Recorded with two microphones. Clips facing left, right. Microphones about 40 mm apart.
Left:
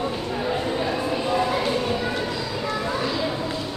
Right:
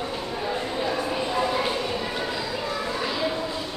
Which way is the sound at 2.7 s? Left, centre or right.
Centre.